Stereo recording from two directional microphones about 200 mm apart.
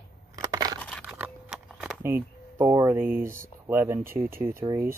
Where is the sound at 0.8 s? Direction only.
5° left (ahead or behind); by 4.1 s 10° right (ahead or behind).